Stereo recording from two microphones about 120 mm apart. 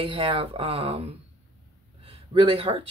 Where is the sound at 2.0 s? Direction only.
45° right (ahead or behind).